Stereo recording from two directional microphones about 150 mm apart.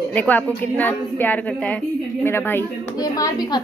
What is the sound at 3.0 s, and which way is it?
Speech, 25° left (ahead or behind).